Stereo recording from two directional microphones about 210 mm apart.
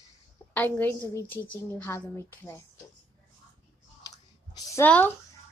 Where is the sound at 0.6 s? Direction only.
10° left (ahead or behind).